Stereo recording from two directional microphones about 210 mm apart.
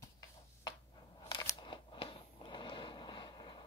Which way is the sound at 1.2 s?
20° left (ahead or behind).